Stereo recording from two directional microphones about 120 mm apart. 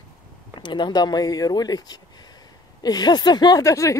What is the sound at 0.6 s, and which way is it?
Speech, 40° left (ahead or behind).